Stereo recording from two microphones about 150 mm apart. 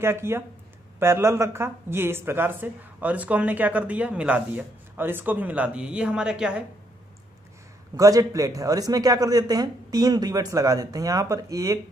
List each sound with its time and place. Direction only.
0.0 s speech: 15° right (ahead or behind)
7.9 s a man's voice: 25° right (ahead or behind)